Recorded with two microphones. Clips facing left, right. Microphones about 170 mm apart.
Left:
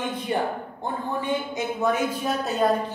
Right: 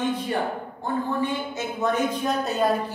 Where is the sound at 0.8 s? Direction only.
20° left (ahead or behind).